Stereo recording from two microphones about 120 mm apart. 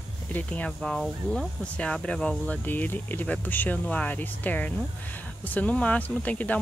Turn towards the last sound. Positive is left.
turn(degrees=10)  # may be behind; listen again after turning